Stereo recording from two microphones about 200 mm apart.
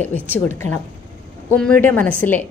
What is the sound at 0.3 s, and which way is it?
A woman's voice, 10° left (ahead or behind).